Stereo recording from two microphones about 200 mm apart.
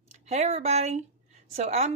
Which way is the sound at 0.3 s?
35° right (ahead or behind).